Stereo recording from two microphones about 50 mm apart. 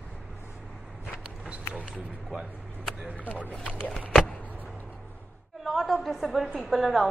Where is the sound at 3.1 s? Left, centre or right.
Left.